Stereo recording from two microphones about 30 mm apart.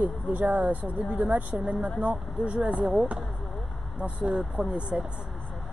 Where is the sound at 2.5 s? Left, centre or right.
Right.